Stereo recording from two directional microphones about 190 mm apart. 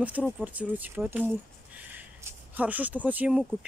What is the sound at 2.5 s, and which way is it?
Speech, 10° right (ahead or behind).